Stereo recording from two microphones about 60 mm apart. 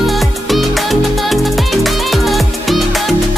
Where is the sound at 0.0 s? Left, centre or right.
Centre.